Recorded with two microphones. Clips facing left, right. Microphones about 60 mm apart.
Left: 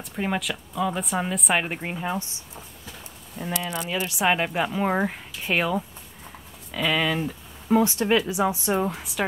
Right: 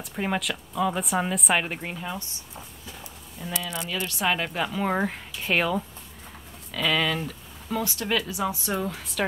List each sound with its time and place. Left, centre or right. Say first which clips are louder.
0.0 s speech: left 1 dB; centre; by 2.2 s left
3.6 s speech: left 2 dB; left
7.7 s speech: left 7 dB; left